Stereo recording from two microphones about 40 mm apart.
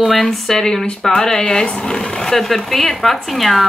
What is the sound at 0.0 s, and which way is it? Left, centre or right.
Speech, centre.